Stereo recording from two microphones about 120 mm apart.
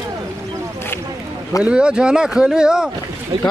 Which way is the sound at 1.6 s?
10° right (ahead or behind).